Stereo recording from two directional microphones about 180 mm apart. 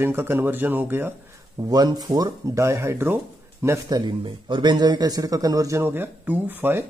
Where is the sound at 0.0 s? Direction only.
10° right (ahead or behind).